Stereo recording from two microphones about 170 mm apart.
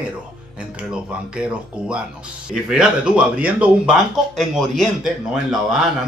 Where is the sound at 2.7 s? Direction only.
5° right (ahead or behind).